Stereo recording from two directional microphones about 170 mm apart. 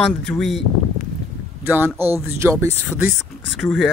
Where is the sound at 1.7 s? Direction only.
10° right (ahead or behind).